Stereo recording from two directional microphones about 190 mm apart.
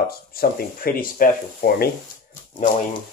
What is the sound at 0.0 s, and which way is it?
Speech, 55° left (ahead or behind).